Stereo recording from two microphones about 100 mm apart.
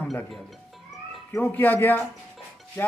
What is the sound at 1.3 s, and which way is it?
Speech, 20° left (ahead or behind).